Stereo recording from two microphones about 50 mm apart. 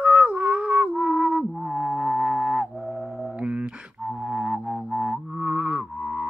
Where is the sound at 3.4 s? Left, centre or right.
Right.